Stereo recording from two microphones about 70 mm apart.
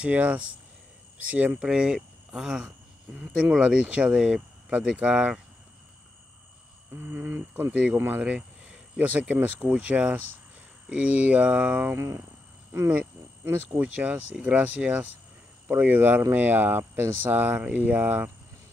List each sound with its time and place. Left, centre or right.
0.0 s speech: right
1.6 s speech: centre
6.9 s speech: right
7.7 s speech: centre
11.9 s speech: right
13.5 s speech: right
15.7 s speech: right